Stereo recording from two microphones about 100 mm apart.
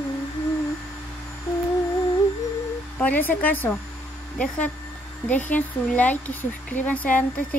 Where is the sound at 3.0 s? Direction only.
20° left (ahead or behind).